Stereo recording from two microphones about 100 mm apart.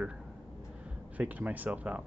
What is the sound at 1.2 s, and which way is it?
Speech, 15° right (ahead or behind).